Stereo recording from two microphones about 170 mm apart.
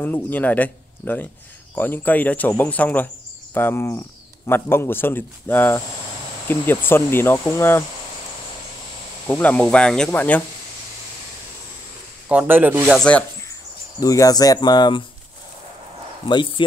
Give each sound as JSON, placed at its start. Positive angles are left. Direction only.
{"t": 0.0, "sound": "speech", "side_deg": 10}
{"t": 9.3, "sound": "speech", "side_deg": 10}
{"t": 12.3, "sound": "speech", "side_deg": -10}
{"t": 13.9, "sound": "speech", "side_deg": 20}
{"t": 16.3, "sound": "speech", "side_deg": 25}